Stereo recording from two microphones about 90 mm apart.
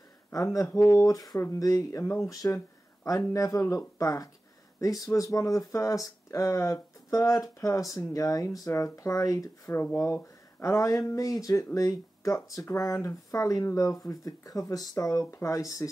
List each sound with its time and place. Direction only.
0.3 s speech: 40° left (ahead or behind)